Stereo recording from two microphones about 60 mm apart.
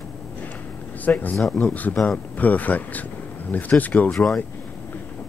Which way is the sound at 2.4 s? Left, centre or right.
Left.